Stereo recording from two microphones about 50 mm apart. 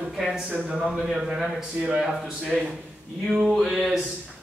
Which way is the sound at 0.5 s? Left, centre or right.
Right.